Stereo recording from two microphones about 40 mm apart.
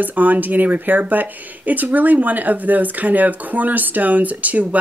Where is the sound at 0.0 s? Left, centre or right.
Right.